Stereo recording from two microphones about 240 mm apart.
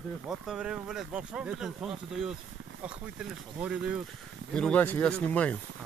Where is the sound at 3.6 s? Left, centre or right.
Centre.